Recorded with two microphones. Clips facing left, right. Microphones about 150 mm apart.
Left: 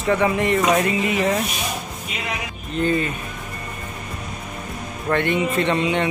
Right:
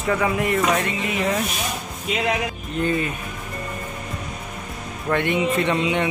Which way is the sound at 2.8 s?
5° right (ahead or behind).